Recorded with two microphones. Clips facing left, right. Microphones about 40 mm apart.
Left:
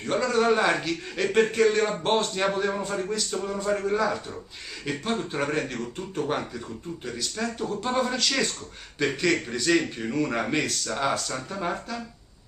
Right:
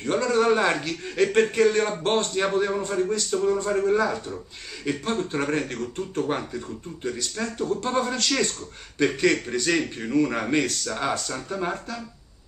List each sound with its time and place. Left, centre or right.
0.0 s a man's voice: centre